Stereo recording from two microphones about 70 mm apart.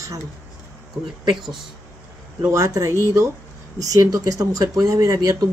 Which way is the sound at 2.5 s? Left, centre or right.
Right.